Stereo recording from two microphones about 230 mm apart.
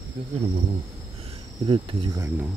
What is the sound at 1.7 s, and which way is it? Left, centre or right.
Cricket, right.